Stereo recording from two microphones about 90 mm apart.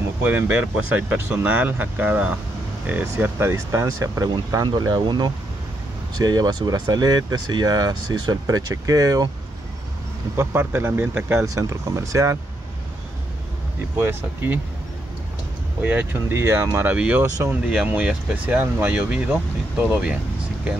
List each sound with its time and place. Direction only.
0.2 s speech: 20° right (ahead or behind); by 4.6 s 35° right (ahead or behind)
4.6 s speech: 50° right (ahead or behind)
10.3 s speech: 25° right (ahead or behind)
11.4 s speech: 35° right (ahead or behind)
13.9 s speech: 25° right (ahead or behind)
15.8 s speech: 20° right (ahead or behind)
16.9 s speech: 15° right (ahead or behind)